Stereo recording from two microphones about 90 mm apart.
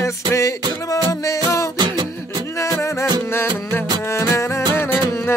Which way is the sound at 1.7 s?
55° right (ahead or behind).